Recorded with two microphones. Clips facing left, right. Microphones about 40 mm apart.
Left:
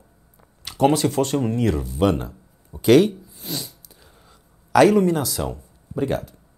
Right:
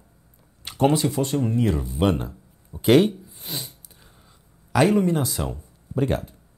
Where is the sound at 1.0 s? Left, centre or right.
Centre.